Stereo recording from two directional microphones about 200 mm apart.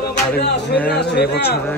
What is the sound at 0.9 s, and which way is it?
Speech, 55° left (ahead or behind).